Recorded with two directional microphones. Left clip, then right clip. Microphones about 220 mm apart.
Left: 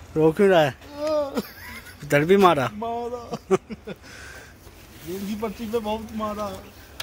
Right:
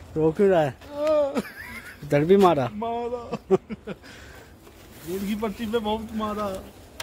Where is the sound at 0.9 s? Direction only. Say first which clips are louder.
Right 4 dB; 5° right (ahead or behind).